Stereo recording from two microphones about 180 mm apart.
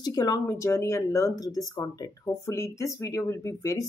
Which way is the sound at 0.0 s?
20° left (ahead or behind).